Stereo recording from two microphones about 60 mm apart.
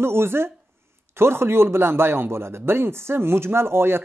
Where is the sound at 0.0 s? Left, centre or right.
Right.